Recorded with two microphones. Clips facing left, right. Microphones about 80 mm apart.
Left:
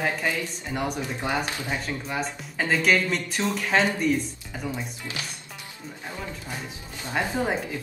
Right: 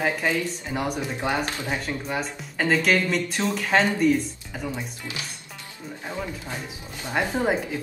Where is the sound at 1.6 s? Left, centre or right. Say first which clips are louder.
Right 2 dB; centre.